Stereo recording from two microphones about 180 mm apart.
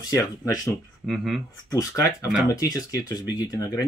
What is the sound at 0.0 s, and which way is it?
Speech, 20° left (ahead or behind).